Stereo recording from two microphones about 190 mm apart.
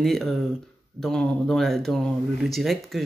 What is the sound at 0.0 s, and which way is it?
Speech, centre (ahead or behind).